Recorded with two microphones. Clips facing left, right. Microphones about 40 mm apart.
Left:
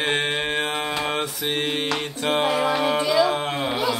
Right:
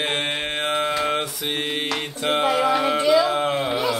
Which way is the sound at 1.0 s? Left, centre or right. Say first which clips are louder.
Right 2 dB; centre.